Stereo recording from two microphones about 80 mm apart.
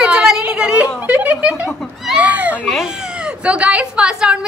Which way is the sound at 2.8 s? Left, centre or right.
Centre.